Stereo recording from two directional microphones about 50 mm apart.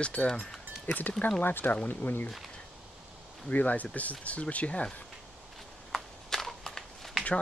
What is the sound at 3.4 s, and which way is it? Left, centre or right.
Speech, left.